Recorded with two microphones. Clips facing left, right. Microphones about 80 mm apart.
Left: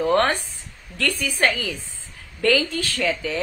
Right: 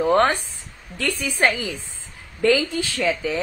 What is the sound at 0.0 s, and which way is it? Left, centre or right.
A woman's voice, centre.